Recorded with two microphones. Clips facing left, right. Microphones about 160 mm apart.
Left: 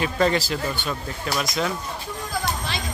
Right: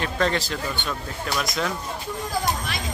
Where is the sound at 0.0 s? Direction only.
5° left (ahead or behind).